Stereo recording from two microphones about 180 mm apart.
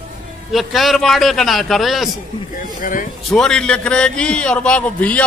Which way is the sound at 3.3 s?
5° left (ahead or behind).